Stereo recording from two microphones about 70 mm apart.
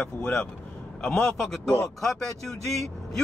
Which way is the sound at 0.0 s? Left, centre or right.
Centre.